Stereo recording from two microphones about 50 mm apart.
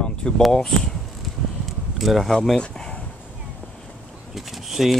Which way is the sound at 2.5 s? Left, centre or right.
Centre.